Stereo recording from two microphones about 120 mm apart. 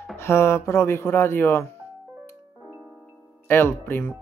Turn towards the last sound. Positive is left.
turn(degrees=20)  # may be behind; listen again after turning